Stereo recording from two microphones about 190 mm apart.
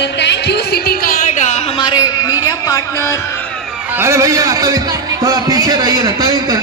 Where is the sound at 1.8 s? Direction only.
20° left (ahead or behind).